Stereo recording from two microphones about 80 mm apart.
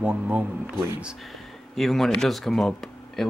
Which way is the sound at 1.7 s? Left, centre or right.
Centre.